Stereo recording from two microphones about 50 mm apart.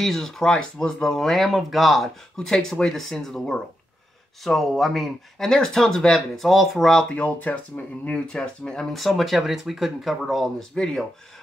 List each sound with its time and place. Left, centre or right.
0.0 s speech: centre
6.9 s speech: centre
7.2 s speech: left
8.9 s speech: centre
10.7 s speech: centre